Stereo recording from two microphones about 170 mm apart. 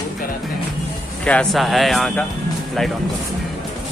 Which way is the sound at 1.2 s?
5° left (ahead or behind).